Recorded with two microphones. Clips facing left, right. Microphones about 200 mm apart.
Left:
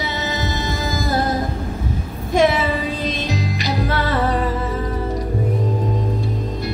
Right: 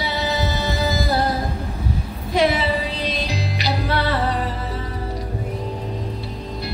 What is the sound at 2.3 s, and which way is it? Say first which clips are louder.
Music: left 2 dB; 45° left (ahead or behind).